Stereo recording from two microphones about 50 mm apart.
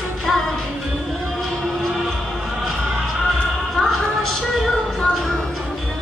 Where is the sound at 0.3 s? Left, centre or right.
Centre.